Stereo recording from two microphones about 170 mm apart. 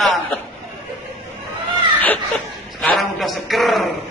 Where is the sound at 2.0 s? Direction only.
10° left (ahead or behind).